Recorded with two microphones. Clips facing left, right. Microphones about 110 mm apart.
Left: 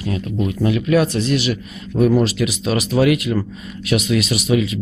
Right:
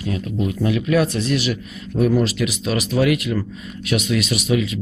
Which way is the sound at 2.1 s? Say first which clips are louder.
Left 1 dB; 30° left (ahead or behind).